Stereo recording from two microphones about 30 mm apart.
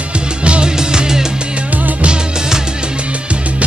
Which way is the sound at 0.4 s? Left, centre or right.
Right.